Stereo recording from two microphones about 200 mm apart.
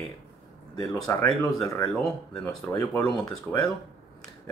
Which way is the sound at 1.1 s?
15° left (ahead or behind).